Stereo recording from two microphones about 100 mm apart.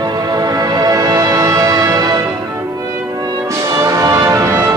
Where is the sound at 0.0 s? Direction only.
40° right (ahead or behind).